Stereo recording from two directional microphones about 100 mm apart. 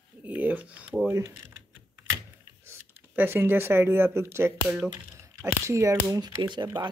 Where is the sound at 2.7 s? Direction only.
20° right (ahead or behind).